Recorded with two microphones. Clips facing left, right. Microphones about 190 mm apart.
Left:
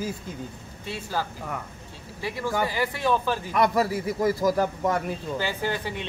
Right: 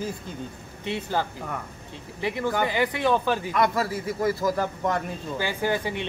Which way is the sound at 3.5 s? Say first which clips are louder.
Left 4 dB; 15° left (ahead or behind).